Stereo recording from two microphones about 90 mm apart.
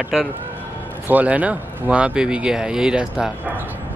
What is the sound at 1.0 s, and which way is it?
Speech, 15° right (ahead or behind).